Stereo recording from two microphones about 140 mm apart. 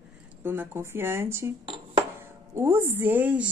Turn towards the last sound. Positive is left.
turn(degrees=-10)  # may be behind; listen again after turning